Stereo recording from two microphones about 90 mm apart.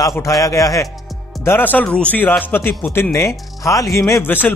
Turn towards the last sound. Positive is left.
turn(degrees=20)  # may be behind; listen again after turning